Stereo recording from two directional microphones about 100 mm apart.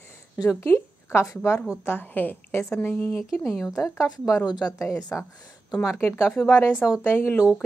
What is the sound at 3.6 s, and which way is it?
A woman's voice, 30° left (ahead or behind).